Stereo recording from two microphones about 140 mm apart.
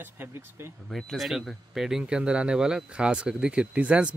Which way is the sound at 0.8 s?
Centre (ahead or behind).